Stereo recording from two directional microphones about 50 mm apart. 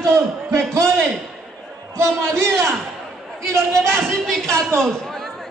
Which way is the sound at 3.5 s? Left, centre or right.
Right.